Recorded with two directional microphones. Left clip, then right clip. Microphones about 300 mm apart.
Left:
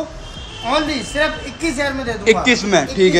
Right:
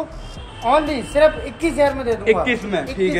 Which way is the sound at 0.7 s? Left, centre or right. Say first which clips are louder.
Right 2 dB; centre.